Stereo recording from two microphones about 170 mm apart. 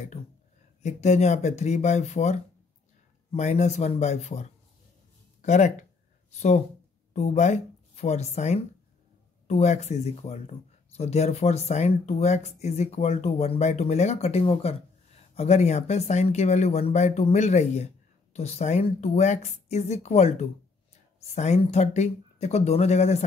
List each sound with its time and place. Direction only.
0.8 s speech: 40° left (ahead or behind)